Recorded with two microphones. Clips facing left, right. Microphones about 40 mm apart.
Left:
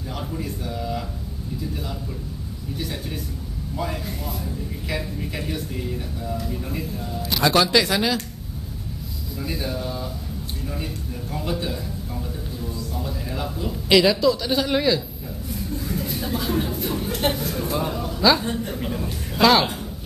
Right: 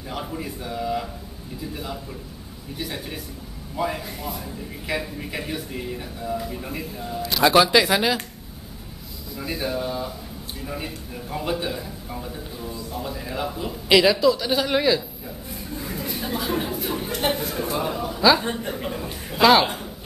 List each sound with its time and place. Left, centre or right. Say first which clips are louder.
0.1 s a man's voice: even; centre
3.7 s a man's voice: right 2 dB; centre
9.4 s a man's voice: right 2 dB; centre
11.3 s a man's voice: right 1 dB; centre
15.5 s a sound: left 4 dB; centre
17.3 s a man's voice: even; centre
18.4 s speech: left 1 dB; right
18.7 s a man's voice: left 1 dB; centre